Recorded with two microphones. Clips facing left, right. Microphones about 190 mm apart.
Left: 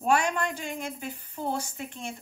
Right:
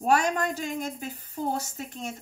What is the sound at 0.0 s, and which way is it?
A woman's voice, 40° right (ahead or behind).